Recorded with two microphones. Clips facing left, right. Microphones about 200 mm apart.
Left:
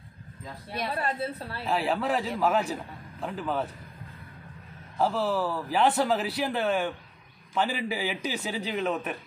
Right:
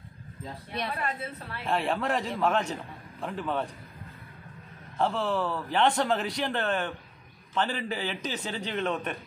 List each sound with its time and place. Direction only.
0.8 s a woman's voice: 35° left (ahead or behind)
1.6 s a man's voice: centre (ahead or behind)
4.9 s a man's voice: 5° left (ahead or behind)